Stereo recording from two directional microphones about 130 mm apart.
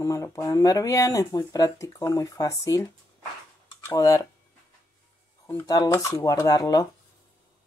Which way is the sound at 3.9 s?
25° left (ahead or behind).